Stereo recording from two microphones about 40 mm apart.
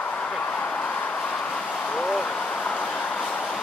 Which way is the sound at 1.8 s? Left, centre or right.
Left.